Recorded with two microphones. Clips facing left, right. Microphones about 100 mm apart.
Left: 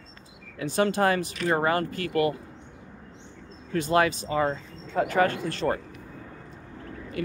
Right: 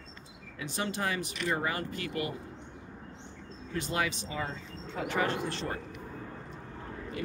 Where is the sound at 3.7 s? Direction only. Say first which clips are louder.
Left 10 dB; 50° left (ahead or behind).